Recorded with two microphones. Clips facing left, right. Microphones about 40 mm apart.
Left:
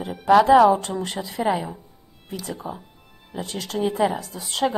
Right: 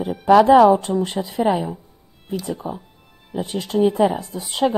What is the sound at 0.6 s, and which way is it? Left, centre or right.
Speech, centre.